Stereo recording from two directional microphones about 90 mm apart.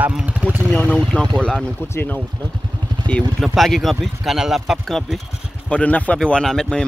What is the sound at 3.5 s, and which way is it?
A man's voice, centre (ahead or behind).